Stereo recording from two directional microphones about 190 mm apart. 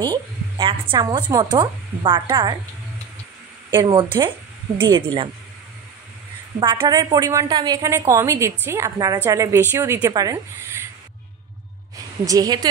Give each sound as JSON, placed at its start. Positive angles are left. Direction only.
{"t": 0.0, "sound": "a woman's voice", "side_deg": -25}
{"t": 3.7, "sound": "a woman's voice", "side_deg": -25}
{"t": 6.6, "sound": "a woman's voice", "side_deg": -20}
{"t": 12.3, "sound": "a woman's voice", "side_deg": -20}